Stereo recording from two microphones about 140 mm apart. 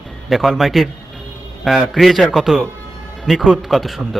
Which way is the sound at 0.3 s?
Centre (ahead or behind).